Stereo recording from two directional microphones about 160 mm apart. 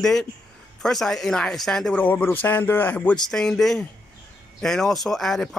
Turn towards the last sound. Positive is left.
turn(degrees=0)  # may be behind; listen again after turning